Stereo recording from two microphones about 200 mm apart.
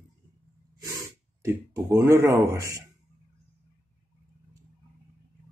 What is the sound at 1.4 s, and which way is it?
A man's voice, 15° right (ahead or behind).